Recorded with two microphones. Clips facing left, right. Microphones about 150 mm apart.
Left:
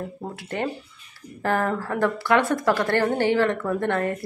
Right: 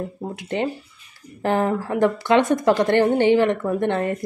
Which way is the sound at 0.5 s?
20° right (ahead or behind).